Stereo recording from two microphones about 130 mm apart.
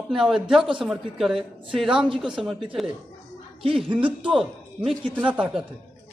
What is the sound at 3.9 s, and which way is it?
Speech, 40° right (ahead or behind).